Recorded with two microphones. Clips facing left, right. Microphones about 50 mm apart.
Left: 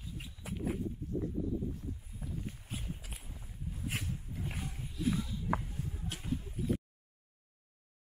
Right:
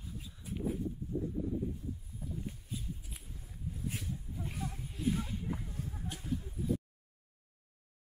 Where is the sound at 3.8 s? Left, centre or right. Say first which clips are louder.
Left 2 dB; left.